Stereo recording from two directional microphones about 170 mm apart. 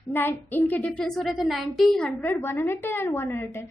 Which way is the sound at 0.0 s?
15° left (ahead or behind).